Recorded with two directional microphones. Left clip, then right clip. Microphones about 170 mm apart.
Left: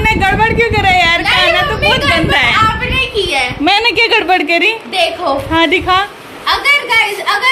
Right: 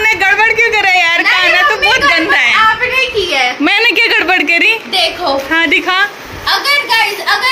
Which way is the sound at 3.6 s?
Centre (ahead or behind).